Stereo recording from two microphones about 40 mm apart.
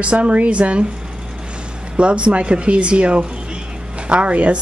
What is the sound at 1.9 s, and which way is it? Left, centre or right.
A woman's voice, right.